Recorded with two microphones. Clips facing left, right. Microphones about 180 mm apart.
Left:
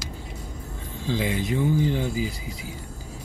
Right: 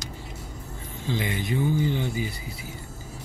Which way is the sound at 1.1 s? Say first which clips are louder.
Left 2 dB; 90° left.